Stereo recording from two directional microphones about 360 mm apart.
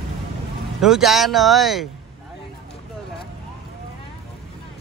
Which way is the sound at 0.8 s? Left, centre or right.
Centre.